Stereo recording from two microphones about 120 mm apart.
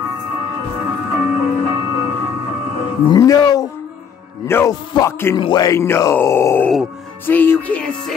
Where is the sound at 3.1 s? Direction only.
35° left (ahead or behind).